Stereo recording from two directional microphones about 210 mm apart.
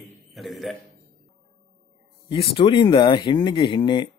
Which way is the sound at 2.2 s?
25° left (ahead or behind).